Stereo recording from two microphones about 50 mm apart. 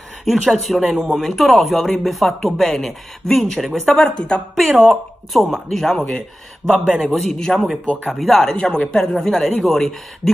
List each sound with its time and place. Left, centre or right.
0.2 s speech: centre
4.6 s speech: centre
7.1 s a man's voice: centre
8.2 s speech: centre
8.5 s a woman's voice: centre
8.9 s speech: centre